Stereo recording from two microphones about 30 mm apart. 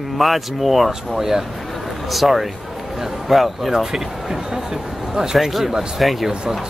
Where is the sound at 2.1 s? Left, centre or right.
Centre.